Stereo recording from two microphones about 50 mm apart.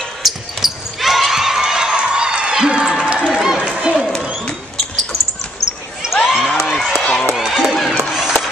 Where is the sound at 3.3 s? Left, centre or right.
Centre.